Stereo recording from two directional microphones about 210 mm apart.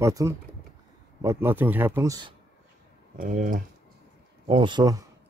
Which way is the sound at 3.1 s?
40° right (ahead or behind).